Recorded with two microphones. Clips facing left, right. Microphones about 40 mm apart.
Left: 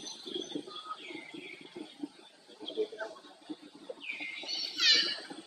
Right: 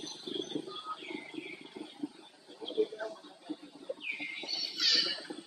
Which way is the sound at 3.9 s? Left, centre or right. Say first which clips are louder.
Right 4 dB; centre.